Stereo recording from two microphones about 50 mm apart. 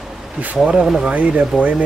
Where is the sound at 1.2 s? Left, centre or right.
Right.